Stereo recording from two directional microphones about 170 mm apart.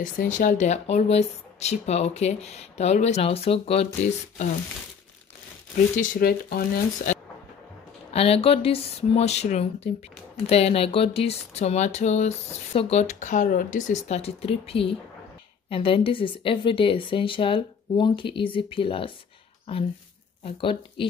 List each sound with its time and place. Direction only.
0.0 s speech: 50° left (ahead or behind); by 3.8 s 35° left (ahead or behind)
5.9 s speech: 60° left (ahead or behind)
8.1 s speech: 35° left (ahead or behind)
20.4 s speech: 30° left (ahead or behind)